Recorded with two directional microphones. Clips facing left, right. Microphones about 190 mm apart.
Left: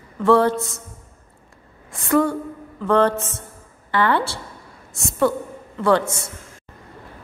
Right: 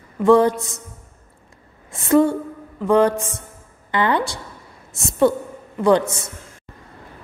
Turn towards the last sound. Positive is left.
turn(degrees=-20)  # may be behind; listen again after turning